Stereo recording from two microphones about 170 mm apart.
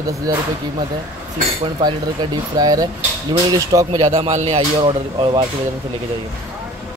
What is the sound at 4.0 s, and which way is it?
Speech, 35° right (ahead or behind).